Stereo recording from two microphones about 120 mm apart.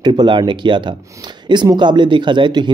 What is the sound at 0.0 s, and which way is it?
Speech, 40° right (ahead or behind).